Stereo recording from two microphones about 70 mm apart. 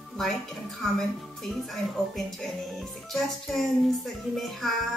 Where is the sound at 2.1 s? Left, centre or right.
Centre.